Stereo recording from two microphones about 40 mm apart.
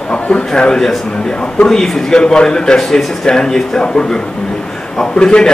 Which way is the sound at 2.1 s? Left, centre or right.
Left.